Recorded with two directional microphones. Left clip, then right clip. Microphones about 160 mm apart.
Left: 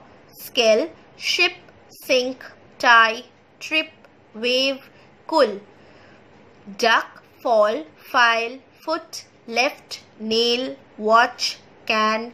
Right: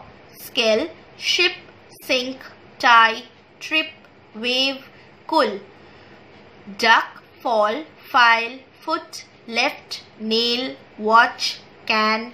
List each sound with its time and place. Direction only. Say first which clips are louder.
0.5 s a woman's voice: left 2 dB; 25° left (ahead or behind)
6.8 s a woman's voice: right 2 dB; 20° left (ahead or behind)